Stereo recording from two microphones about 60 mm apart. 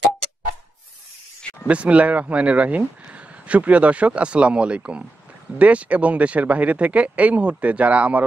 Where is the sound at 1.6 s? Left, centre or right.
Right.